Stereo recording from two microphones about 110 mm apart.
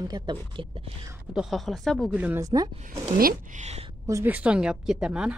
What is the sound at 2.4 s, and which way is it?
Speech, 30° right (ahead or behind).